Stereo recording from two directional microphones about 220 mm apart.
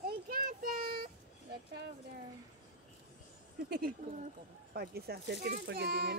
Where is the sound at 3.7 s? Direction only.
40° right (ahead or behind).